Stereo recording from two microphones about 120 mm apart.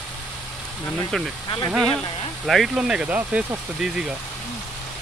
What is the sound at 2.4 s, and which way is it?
Speech, centre (ahead or behind).